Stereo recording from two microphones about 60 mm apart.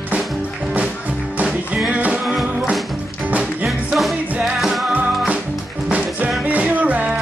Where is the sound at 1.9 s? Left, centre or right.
Right.